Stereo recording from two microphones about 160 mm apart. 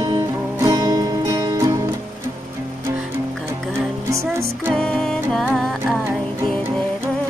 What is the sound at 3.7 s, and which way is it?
Music, 15° right (ahead or behind).